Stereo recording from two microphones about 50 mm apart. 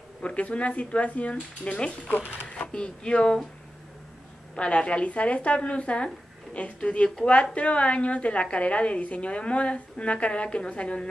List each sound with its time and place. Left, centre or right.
0.2 s a woman's voice: left
4.6 s a woman's voice: left